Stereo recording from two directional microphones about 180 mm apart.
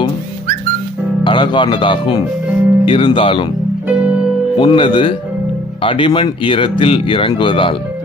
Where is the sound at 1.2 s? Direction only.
25° left (ahead or behind).